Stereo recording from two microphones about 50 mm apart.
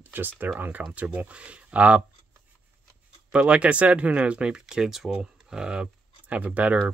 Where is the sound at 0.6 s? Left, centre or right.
Right.